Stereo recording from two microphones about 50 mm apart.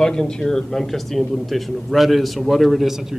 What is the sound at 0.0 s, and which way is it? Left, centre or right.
A woman's voice, centre.